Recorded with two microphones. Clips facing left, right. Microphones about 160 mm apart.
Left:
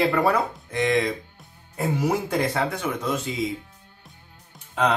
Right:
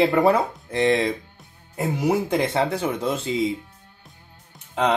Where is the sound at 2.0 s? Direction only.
20° right (ahead or behind).